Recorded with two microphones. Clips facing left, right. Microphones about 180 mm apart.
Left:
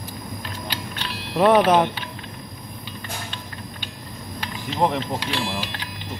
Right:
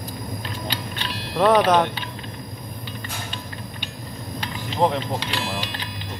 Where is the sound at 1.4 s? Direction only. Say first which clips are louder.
Left 1 dB; 5° left (ahead or behind).